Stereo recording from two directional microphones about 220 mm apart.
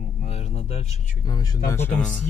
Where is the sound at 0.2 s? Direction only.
30° left (ahead or behind).